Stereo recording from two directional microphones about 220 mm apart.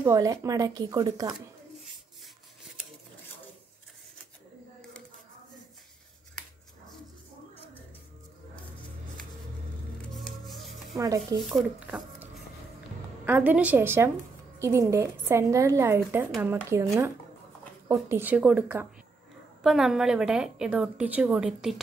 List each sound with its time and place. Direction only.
0.0 s a woman's voice: 15° right (ahead or behind)
10.1 s rub: centre (ahead or behind)
11.4 s a woman's voice: 5° right (ahead or behind)